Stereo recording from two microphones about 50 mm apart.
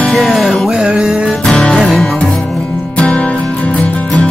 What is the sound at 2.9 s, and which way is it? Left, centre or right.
Music, left.